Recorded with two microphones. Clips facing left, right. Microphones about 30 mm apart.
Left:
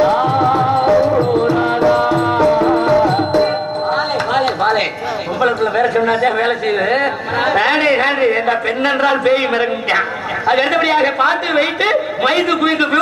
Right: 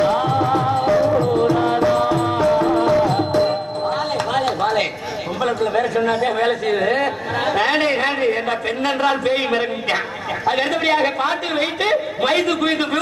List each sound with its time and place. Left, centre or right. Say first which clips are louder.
0.6 s music: left 4 dB; left
4.4 s a sound: left 4 dB; left
5.6 s speech: left 4 dB; left
7.6 s a man's voice: left 4 dB; centre